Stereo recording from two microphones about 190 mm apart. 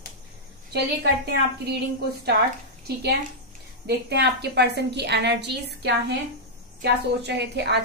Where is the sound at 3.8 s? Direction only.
60° right (ahead or behind).